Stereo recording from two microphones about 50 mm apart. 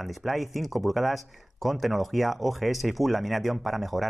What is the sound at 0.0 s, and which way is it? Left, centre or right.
Speech, centre.